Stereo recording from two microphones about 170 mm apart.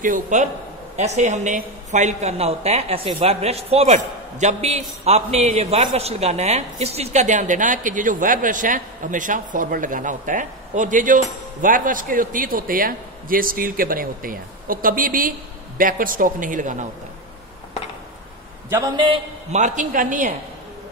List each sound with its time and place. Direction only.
0.0 s a woman's voice: 50° right (ahead or behind)
18.9 s a man's voice: 30° right (ahead or behind)
19.5 s a woman's voice: 45° right (ahead or behind)